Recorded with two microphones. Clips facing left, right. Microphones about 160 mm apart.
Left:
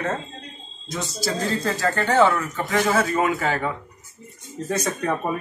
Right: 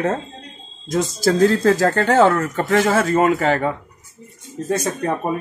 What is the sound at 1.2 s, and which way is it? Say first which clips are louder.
Speech: right 10 dB; 45° right (ahead or behind).